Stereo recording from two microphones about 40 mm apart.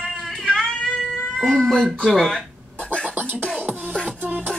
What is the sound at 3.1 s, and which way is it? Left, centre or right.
Beatboxing, right.